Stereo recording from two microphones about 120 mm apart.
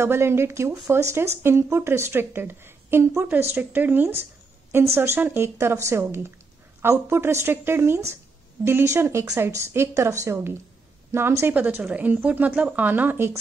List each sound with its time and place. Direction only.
0.0 s a woman's voice: 20° right (ahead or behind)